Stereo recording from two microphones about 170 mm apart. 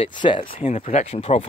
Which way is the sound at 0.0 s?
30° left (ahead or behind).